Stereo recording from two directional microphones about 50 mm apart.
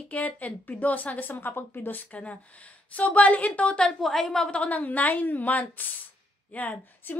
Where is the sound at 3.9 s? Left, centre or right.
Centre.